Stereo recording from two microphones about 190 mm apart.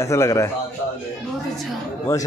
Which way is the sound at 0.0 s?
15° left (ahead or behind).